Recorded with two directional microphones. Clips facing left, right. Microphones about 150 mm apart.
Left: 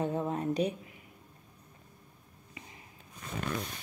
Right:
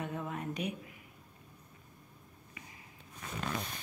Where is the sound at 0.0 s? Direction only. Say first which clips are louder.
Left 7 dB; 30° left (ahead or behind).